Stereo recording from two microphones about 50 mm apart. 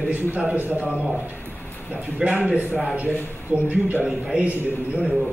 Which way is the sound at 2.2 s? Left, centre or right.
Right.